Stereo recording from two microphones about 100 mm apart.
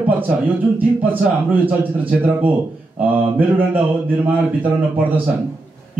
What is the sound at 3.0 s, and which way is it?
A man's voice, 20° right (ahead or behind).